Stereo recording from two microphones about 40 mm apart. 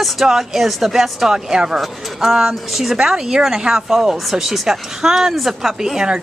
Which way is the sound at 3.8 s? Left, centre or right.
Centre.